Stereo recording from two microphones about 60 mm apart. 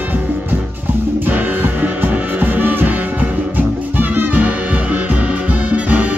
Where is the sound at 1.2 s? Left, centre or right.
Right.